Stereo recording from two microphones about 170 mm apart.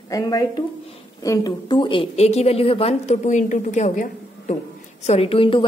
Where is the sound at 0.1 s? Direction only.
20° left (ahead or behind).